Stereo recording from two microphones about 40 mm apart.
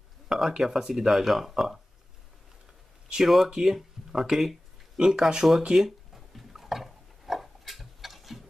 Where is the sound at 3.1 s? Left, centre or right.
Centre.